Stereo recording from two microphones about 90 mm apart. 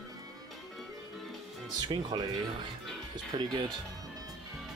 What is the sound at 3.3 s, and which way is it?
Speech, 60° right (ahead or behind).